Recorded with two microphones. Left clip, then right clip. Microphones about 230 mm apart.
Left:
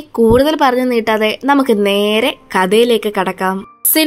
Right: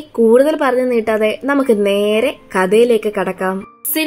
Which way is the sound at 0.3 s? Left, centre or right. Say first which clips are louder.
Even; left.